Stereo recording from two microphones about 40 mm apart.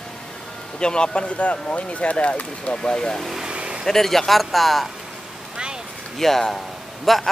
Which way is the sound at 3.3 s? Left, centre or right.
Right.